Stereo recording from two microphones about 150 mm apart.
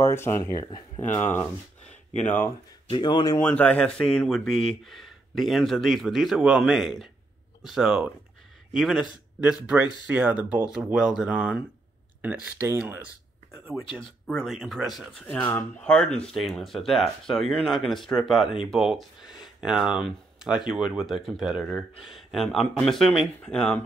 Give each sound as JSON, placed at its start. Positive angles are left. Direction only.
{"t": 0.0, "sound": "speech", "side_deg": 15}
{"t": 1.0, "sound": "speech", "side_deg": 15}
{"t": 2.9, "sound": "speech", "side_deg": 30}
{"t": 3.3, "sound": "speech", "side_deg": 10}
{"t": 14.2, "sound": "speech", "side_deg": 0}